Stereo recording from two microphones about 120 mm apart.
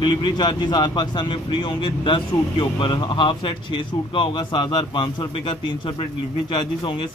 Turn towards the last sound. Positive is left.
turn(degrees=40)  # may be behind; listen again after turning